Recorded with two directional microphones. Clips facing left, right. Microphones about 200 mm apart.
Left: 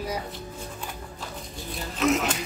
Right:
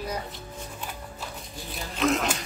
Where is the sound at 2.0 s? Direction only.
5° left (ahead or behind).